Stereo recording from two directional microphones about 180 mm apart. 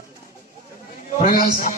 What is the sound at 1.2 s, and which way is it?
Speech, 50° left (ahead or behind).